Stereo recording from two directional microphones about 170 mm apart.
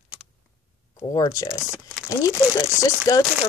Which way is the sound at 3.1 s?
20° left (ahead or behind).